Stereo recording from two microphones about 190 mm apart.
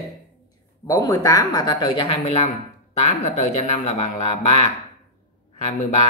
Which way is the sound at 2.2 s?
35° left (ahead or behind).